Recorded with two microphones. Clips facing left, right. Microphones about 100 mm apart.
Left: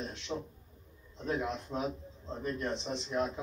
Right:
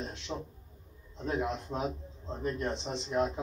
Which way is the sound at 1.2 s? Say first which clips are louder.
Right 2 dB; 20° right (ahead or behind).